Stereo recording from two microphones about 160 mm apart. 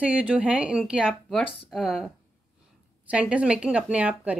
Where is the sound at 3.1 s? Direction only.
5° right (ahead or behind).